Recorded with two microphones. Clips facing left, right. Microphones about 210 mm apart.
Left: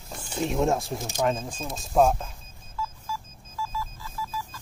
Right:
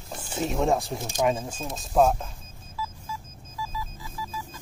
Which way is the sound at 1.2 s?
10° right (ahead or behind).